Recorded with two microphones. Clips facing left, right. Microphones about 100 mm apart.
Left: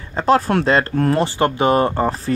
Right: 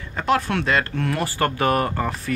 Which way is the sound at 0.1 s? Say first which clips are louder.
Left 6 dB; 35° left (ahead or behind).